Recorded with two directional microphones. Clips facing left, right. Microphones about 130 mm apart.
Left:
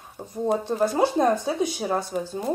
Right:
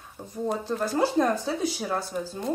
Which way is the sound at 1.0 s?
20° left (ahead or behind).